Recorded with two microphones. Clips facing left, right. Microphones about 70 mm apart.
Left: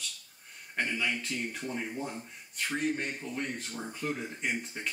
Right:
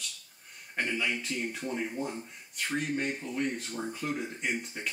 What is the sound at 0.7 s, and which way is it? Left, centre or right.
Speech, centre.